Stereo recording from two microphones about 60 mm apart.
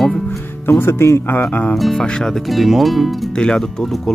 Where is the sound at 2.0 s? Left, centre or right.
Centre.